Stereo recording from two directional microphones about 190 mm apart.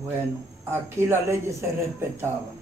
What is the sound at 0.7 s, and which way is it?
Speech, 15° right (ahead or behind).